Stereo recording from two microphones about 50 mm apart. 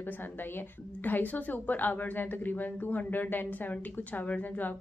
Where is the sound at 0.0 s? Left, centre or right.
Left.